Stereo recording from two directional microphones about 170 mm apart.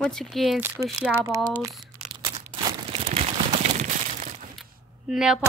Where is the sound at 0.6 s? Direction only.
15° right (ahead or behind).